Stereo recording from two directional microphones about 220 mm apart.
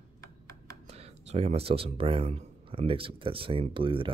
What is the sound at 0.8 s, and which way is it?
Speech, 30° right (ahead or behind).